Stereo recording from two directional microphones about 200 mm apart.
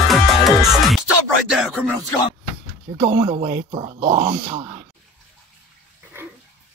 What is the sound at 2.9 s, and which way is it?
Speech, 25° right (ahead or behind).